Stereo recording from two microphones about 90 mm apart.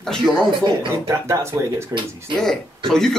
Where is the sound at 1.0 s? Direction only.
35° right (ahead or behind).